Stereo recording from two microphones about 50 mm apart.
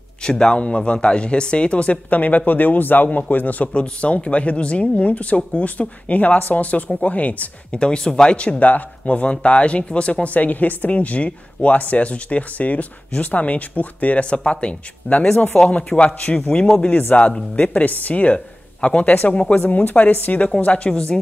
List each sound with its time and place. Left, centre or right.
0.2 s a man's voice: centre
17.1 s speech: left
19.5 s speech: left